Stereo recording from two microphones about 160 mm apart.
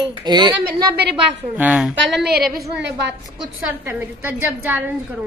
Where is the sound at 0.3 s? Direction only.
25° right (ahead or behind).